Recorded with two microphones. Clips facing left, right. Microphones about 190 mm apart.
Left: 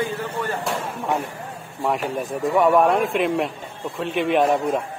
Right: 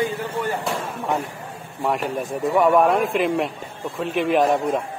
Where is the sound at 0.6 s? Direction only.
Centre (ahead or behind).